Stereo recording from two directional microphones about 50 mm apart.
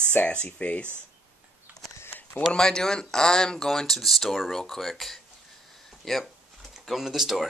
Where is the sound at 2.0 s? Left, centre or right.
Left.